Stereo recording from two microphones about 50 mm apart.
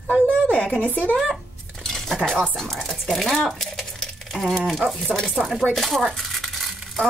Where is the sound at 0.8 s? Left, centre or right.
Left.